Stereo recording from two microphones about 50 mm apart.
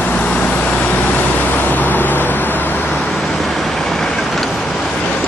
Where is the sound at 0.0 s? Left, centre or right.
Left.